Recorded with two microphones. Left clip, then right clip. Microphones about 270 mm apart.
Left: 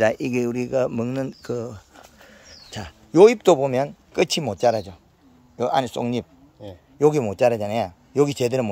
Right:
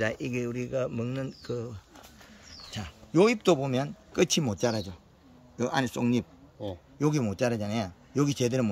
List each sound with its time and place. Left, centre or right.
0.0 s speech: centre